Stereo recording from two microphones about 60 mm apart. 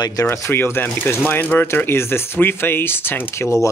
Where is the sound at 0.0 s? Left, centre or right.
Left.